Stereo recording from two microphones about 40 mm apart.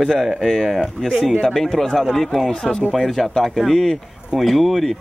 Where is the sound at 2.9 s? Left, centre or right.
Centre.